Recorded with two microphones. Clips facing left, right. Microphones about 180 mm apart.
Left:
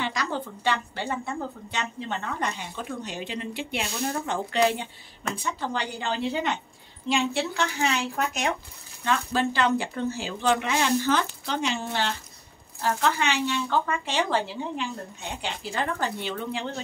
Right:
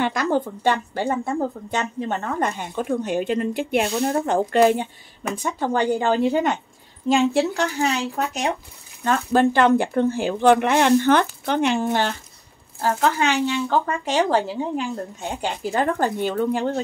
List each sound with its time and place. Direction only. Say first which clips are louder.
0.0 s speech: right 8 dB; 50° right (ahead or behind); by 8.5 s 35° right (ahead or behind)
9.0 s speech: right 7 dB; 50° right (ahead or behind)